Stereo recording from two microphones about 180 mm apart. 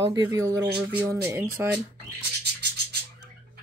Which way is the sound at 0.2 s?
20° right (ahead or behind).